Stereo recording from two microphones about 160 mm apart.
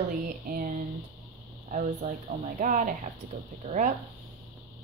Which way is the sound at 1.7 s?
55° right (ahead or behind).